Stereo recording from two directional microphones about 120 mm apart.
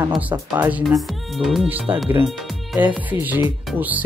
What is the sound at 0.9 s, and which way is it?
Speech, centre (ahead or behind).